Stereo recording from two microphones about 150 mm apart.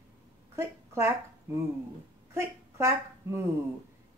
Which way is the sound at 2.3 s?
20° right (ahead or behind).